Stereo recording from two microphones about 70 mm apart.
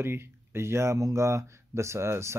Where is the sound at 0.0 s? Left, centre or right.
Right.